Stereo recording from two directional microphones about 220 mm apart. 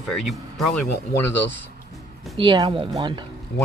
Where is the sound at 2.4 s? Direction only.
20° right (ahead or behind).